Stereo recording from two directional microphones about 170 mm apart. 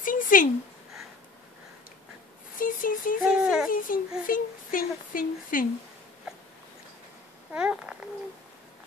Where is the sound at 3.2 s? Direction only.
5° right (ahead or behind).